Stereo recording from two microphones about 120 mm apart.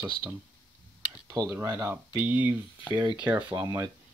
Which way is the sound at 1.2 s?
25° right (ahead or behind).